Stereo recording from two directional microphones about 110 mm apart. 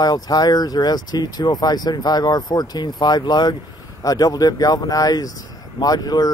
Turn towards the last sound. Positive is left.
turn(degrees=35)  # may be behind; listen again after turning